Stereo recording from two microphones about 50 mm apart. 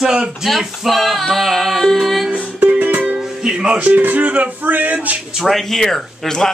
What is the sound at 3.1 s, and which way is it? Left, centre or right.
Music, centre.